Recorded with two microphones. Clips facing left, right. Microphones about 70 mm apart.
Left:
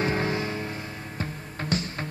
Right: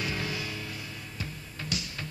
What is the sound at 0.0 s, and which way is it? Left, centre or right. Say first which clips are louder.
Music: left 8 dB; left.